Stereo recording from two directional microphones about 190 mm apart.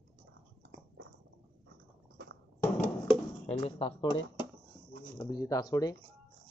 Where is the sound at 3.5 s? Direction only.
30° left (ahead or behind).